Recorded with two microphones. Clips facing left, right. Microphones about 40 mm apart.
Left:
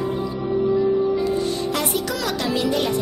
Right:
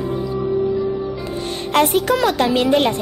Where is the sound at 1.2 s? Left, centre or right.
Right.